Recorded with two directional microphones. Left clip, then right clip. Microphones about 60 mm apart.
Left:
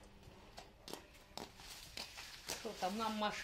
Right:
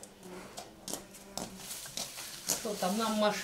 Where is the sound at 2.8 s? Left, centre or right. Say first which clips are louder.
Right 8 dB; centre.